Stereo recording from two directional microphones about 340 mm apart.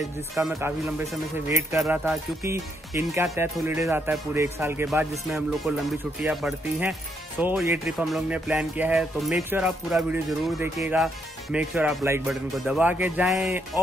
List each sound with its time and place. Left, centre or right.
0.4 s speech: centre